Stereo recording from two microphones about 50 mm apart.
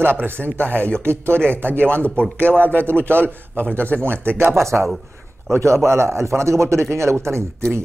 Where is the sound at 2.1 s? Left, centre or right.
Centre.